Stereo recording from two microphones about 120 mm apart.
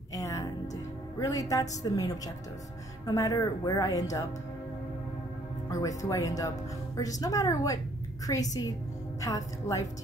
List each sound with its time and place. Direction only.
0.1 s music: 30° left (ahead or behind)
1.2 s speech: 30° left (ahead or behind)
5.7 s a woman's voice: 30° left (ahead or behind)